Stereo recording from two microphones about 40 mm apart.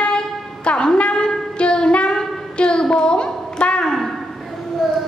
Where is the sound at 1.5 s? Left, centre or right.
Left.